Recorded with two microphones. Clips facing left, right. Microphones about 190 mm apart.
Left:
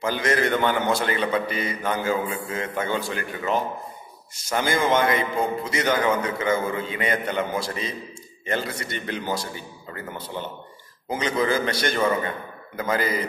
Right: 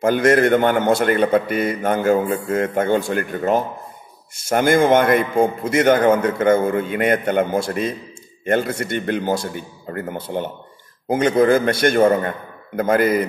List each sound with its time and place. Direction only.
0.0 s a man's voice: 55° right (ahead or behind)